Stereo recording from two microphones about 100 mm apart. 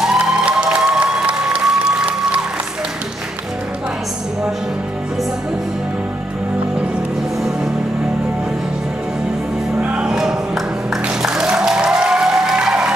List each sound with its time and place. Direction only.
0.0 s music: 5° right (ahead or behind)
9.8 s music: 10° right (ahead or behind)